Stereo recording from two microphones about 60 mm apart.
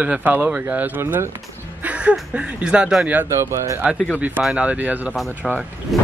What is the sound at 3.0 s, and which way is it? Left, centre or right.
Speech, right.